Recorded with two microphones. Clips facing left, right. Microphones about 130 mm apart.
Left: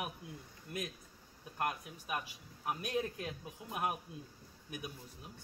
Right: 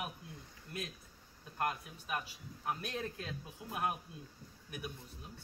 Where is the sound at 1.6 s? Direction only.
20° left (ahead or behind).